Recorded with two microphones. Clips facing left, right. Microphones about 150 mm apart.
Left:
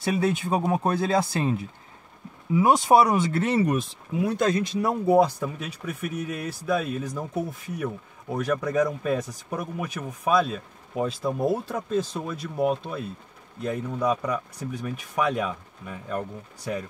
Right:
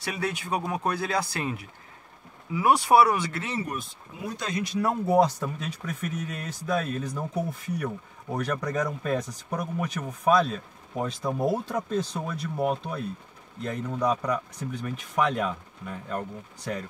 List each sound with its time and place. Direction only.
0.0 s speech: 25° left (ahead or behind)
3.3 s speech: 55° left (ahead or behind)
4.8 s speech: 10° left (ahead or behind)